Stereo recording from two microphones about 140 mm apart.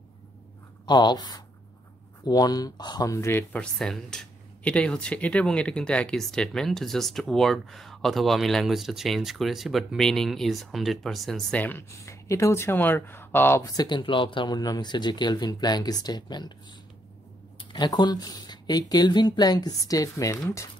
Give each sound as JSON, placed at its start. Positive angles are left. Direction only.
{"t": 0.8, "sound": "speech", "side_deg": 30}
{"t": 3.7, "sound": "speech", "side_deg": 0}
{"t": 11.6, "sound": "speech", "side_deg": 15}
{"t": 17.6, "sound": "speech", "side_deg": 30}